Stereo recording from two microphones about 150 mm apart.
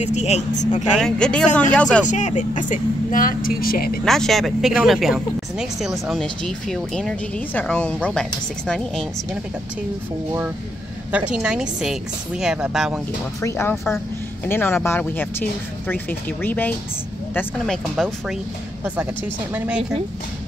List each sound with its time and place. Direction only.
0.0 s speech: 50° left (ahead or behind)
0.9 s speech: 5° left (ahead or behind)
2.0 s speech: 55° left (ahead or behind); by 4.0 s 85° left
4.0 s speech: centre (ahead or behind)
11.1 s speech: 10° right (ahead or behind)
13.4 s speech: 20° left (ahead or behind)
19.5 s a woman's voice: 10° right (ahead or behind)